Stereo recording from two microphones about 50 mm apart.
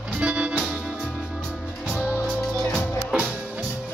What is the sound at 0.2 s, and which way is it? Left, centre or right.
Music, right.